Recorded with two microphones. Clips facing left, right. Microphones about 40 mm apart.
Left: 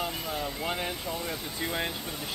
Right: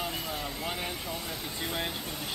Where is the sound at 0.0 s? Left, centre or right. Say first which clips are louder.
Left 2 dB; centre.